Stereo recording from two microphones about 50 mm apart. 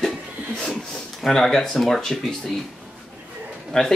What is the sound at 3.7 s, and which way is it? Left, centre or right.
Speech, centre.